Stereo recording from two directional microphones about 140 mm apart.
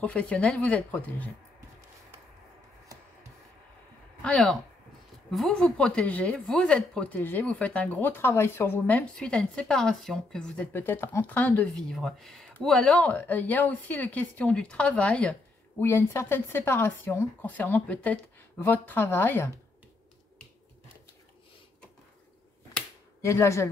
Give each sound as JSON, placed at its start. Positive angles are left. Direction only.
{"t": 0.0, "sound": "speech", "side_deg": 10}
{"t": 4.2, "sound": "speech", "side_deg": 5}
{"t": 23.2, "sound": "speech", "side_deg": 20}